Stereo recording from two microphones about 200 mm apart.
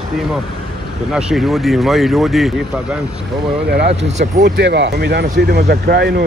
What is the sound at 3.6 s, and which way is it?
Speech, 55° right (ahead or behind).